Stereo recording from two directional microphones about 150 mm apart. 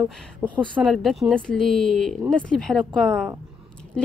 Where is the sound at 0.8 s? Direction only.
Centre (ahead or behind).